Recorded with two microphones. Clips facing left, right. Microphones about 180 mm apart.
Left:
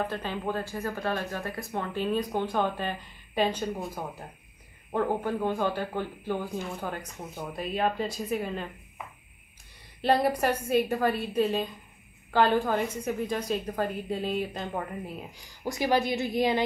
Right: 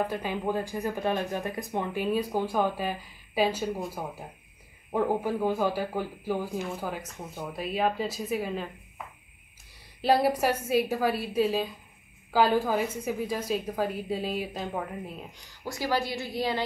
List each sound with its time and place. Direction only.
0.0 s a woman's voice: 10° right (ahead or behind)
10.0 s a woman's voice: 5° right (ahead or behind)
15.6 s a woman's voice: 20° left (ahead or behind)